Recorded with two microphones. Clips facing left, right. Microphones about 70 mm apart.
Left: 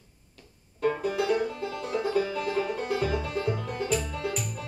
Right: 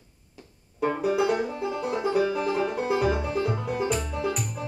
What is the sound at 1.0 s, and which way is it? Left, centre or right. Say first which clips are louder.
Music: right 3 dB; centre.